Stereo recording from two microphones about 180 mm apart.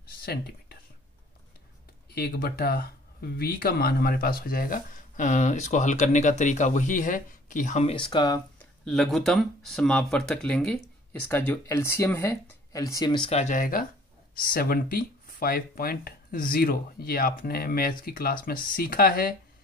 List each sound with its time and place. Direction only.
0.2 s speech: 60° left (ahead or behind)
2.1 s speech: 60° left (ahead or behind); by 7.9 s 40° left (ahead or behind)
7.9 s speech: 25° left (ahead or behind)
8.8 s speech: centre (ahead or behind); by 13.3 s 25° left (ahead or behind)
13.3 s speech: 40° left (ahead or behind); by 19.3 s 55° left (ahead or behind)